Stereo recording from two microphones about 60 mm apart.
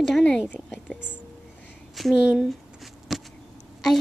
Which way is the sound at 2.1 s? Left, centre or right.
Centre.